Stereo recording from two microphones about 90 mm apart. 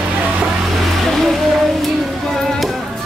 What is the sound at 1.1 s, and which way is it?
Music, 5° left (ahead or behind).